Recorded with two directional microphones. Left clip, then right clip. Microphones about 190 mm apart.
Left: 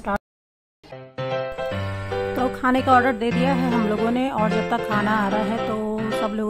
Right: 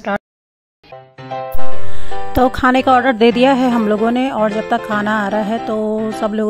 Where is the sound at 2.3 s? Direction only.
45° right (ahead or behind).